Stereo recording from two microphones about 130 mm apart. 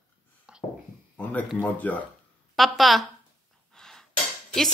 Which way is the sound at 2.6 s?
Centre (ahead or behind).